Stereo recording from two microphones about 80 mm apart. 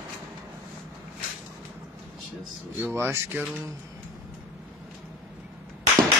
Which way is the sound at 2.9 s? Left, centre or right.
Right.